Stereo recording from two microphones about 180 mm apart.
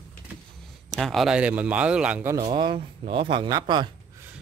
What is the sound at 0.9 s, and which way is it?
A man's voice, centre (ahead or behind).